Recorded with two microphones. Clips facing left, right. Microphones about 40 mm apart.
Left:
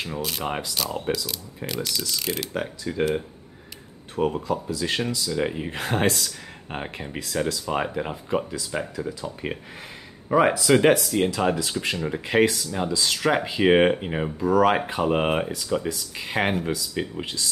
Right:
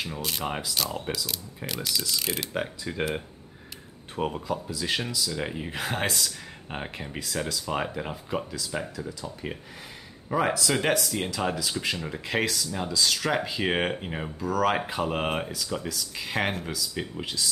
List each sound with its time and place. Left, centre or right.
0.0 s speech: centre
4.3 s speech: centre
9.0 s speech: left; by 17.5 s centre